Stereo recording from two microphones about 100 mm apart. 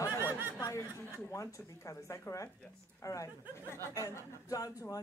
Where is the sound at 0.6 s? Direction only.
30° left (ahead or behind).